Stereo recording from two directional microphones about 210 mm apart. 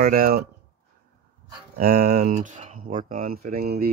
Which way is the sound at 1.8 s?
45° right (ahead or behind).